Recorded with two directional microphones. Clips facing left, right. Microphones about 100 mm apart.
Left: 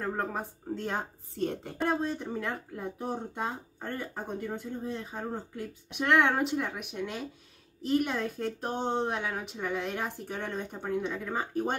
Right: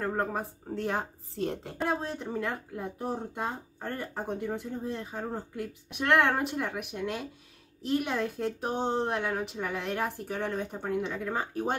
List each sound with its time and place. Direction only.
0.0 s a woman's voice: 5° right (ahead or behind)